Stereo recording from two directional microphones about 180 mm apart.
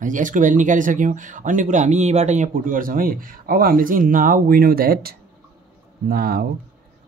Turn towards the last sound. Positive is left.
turn(degrees=-55)  # may be behind; listen again after turning